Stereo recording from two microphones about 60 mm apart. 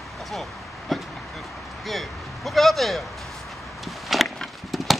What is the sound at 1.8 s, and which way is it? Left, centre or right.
Speech, centre.